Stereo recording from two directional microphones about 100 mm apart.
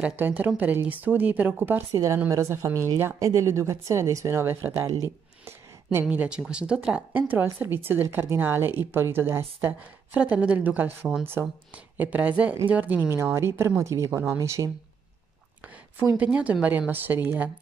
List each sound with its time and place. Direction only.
0.0 s a woman's voice: 15° right (ahead or behind); by 5.0 s 35° right (ahead or behind)
5.4 s a sound: 25° right (ahead or behind)
6.0 s a woman's voice: 10° right (ahead or behind)
13.1 s a woman's voice: 30° right (ahead or behind)
15.6 s a sound: 15° right (ahead or behind)
16.2 s speech: 15° right (ahead or behind)